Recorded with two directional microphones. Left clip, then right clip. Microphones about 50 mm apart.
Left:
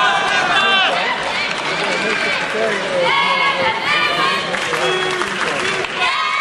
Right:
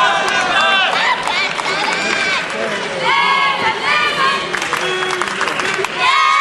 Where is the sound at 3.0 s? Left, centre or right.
Right.